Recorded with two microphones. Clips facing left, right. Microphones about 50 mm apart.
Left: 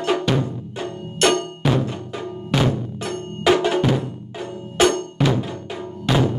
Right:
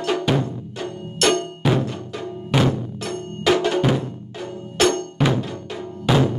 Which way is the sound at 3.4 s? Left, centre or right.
Centre.